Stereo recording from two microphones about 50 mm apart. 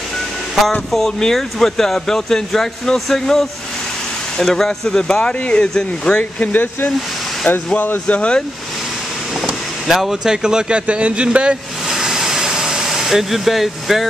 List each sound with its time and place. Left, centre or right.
0.9 s speech: centre
6.5 s speech: left
8.2 s speech: centre
9.4 s speech: centre; by 11.5 s right
11.9 s vehicle: centre